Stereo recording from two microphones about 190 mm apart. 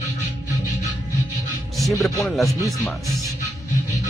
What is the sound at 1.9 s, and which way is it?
Speech, 15° left (ahead or behind).